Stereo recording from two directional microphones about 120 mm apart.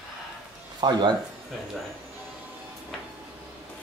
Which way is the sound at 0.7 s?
40° right (ahead or behind).